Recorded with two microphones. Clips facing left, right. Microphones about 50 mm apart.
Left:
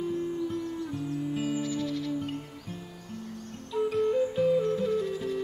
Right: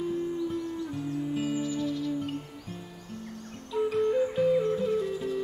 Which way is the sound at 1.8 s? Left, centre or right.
Left.